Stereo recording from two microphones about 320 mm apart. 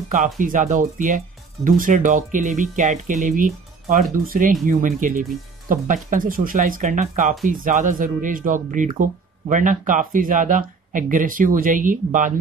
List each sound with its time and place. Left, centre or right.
0.1 s speech: right